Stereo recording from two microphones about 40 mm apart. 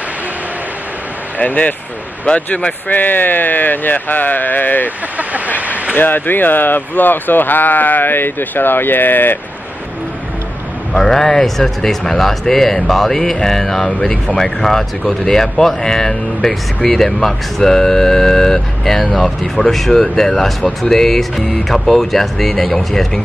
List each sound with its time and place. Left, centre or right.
1.4 s speech: left
2.9 s speech: left
5.9 s speech: left
10.9 s speech: centre